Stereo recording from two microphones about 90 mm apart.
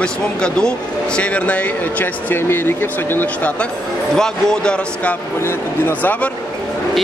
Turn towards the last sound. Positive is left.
turn(degrees=20)  # may be behind; listen again after turning